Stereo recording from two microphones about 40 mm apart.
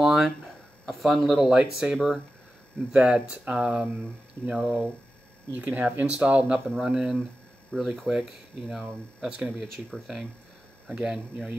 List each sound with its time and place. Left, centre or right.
0.0 s a sound: centre
0.8 s speech: centre
1.4 s speech: centre
2.0 s speech: centre
2.9 s speech: right
5.5 s speech: right
6.8 s speech: centre
7.7 s speech: left
8.1 s speech: centre
9.5 s speech: centre
11.0 s speech: centre